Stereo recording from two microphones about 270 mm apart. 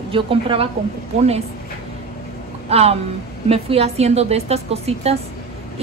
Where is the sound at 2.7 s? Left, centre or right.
Right.